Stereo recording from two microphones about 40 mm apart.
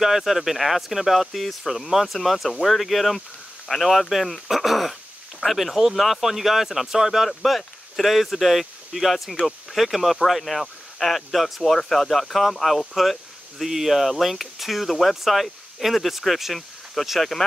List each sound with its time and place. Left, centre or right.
0.0 s speech: centre
7.2 s speech: centre